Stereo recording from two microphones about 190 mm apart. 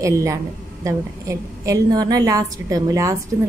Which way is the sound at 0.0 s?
15° right (ahead or behind).